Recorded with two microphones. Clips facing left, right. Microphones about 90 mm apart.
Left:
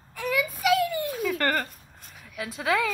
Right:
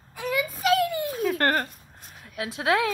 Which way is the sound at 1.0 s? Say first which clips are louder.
Right 2 dB; 5° right (ahead or behind).